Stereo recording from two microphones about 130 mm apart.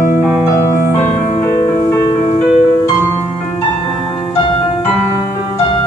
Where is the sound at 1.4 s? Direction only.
45° left (ahead or behind).